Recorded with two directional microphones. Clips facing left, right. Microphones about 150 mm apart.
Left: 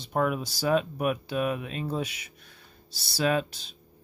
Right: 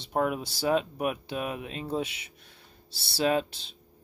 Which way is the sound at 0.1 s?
20° right (ahead or behind).